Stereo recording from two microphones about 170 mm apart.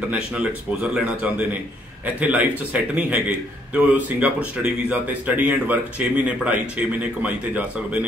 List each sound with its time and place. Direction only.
0.1 s a man's voice: 5° right (ahead or behind)